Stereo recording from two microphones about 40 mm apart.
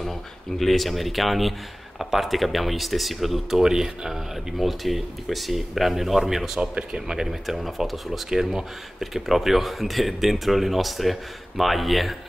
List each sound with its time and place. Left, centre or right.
0.0 s speech: centre
7.2 s speech: centre